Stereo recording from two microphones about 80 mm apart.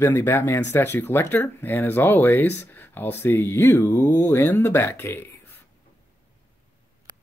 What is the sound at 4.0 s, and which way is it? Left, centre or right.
Speech, left.